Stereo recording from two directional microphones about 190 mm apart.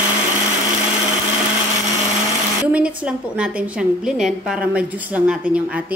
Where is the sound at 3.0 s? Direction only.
5° right (ahead or behind).